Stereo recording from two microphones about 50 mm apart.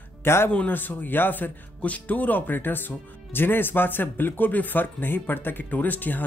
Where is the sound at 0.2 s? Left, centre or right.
Left.